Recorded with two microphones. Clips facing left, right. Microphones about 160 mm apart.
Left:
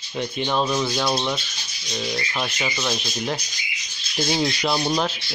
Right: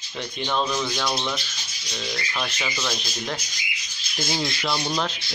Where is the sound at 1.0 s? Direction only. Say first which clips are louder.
Left 4 dB; 25° left (ahead or behind).